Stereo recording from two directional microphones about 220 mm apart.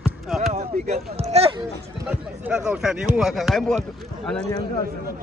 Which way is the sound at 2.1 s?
5° right (ahead or behind).